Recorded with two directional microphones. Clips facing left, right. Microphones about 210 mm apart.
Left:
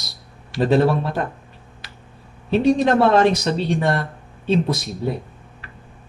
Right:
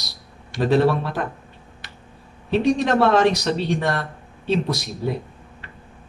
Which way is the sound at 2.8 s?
25° left (ahead or behind).